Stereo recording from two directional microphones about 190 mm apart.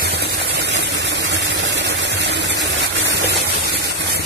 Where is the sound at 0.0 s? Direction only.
60° right (ahead or behind).